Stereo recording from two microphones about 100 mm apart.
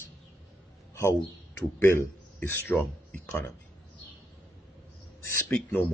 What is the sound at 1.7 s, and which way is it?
Speech, 20° left (ahead or behind).